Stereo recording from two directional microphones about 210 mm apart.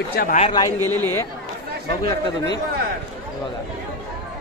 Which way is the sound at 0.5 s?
20° left (ahead or behind).